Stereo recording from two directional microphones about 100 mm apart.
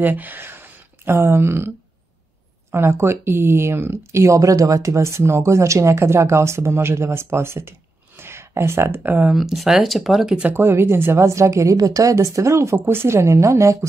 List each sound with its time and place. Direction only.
0.0 s speech: 15° right (ahead or behind)
2.7 s speech: 25° right (ahead or behind)
9.3 s speech: centre (ahead or behind)
10.5 s speech: 25° right (ahead or behind)